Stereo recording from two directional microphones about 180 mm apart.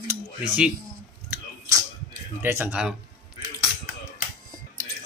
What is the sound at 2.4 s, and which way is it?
Speech, 10° right (ahead or behind).